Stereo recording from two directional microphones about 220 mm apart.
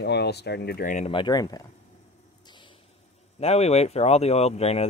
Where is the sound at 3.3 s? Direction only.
30° left (ahead or behind).